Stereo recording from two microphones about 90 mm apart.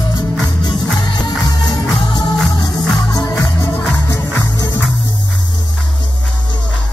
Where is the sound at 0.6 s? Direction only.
55° left (ahead or behind).